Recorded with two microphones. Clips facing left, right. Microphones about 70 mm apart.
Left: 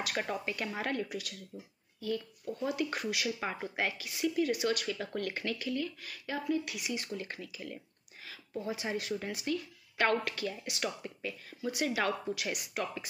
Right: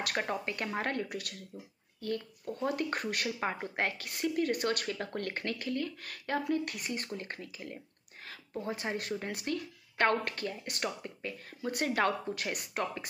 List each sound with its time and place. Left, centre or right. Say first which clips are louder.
0.2 s speech: right 1 dB; right
3.3 s speech: right 1 dB; right